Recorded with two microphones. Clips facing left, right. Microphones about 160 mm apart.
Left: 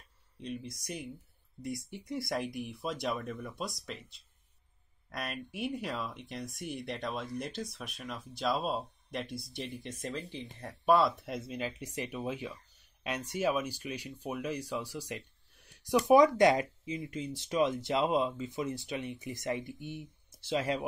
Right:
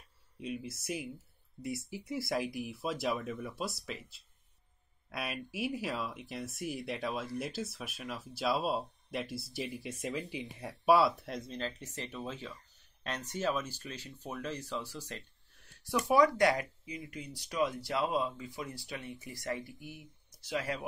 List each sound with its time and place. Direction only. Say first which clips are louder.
0.4 s speech: right 1 dB; 5° right (ahead or behind); by 20.8 s 20° left (ahead or behind)